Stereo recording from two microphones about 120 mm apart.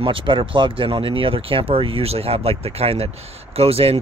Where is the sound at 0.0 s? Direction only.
45° right (ahead or behind).